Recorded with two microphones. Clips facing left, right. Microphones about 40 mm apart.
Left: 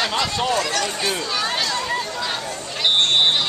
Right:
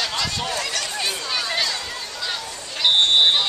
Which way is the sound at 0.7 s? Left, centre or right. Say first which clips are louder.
Left 3 dB; centre.